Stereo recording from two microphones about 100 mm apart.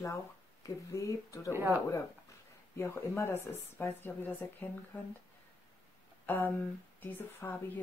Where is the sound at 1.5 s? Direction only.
25° right (ahead or behind).